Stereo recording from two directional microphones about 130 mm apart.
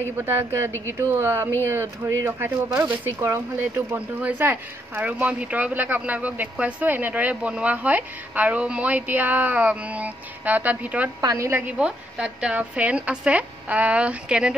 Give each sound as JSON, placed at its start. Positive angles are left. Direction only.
{"t": 0.0, "sound": "speech", "side_deg": -20}
{"t": 11.1, "sound": "speech", "side_deg": -25}